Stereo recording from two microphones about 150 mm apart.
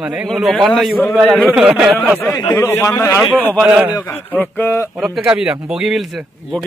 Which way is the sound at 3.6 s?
5° right (ahead or behind).